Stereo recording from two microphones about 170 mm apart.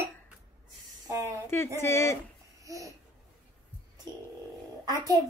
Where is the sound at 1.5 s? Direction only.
15° left (ahead or behind).